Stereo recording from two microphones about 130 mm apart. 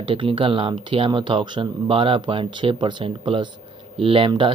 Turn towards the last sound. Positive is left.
turn(degrees=-40)  # may be behind; listen again after turning